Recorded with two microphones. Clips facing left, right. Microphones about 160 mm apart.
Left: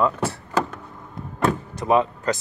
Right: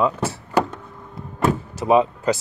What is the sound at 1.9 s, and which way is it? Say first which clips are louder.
Speech: right 3 dB; 15° right (ahead or behind).